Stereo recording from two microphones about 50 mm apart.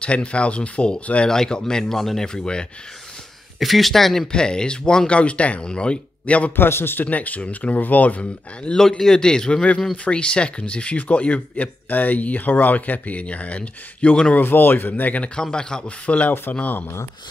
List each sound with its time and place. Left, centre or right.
0.0 s speech: left
1.3 s a man's voice: centre
3.5 s speech: centre
4.3 s speech: centre
6.5 s a man's voice: left
7.1 s speech: left
8.7 s a man's voice: centre
14.3 s speech: left
15.3 s a man's voice: centre
16.2 s speech: left